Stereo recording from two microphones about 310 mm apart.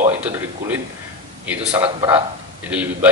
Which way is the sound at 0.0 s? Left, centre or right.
Centre.